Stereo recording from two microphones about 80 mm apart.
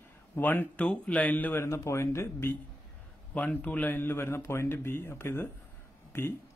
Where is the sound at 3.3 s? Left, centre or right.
Centre.